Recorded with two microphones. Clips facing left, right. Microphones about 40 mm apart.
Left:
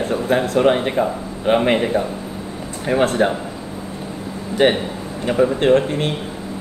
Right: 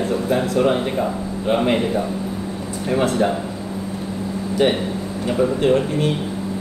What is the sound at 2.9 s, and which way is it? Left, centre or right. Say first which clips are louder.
Speech: left 2 dB; left.